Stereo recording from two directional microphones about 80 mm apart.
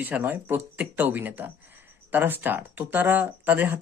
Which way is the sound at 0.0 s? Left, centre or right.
Right.